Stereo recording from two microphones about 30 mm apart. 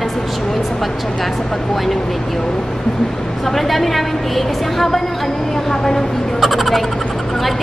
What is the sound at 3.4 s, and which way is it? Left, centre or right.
A woman's voice, centre.